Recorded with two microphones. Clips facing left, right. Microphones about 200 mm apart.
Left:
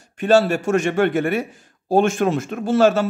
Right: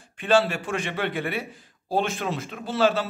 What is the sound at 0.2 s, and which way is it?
A man's voice, 45° left (ahead or behind).